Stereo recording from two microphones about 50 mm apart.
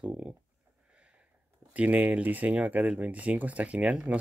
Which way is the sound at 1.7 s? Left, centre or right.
Right.